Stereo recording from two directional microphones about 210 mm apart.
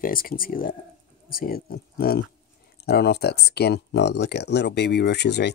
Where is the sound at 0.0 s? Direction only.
45° left (ahead or behind).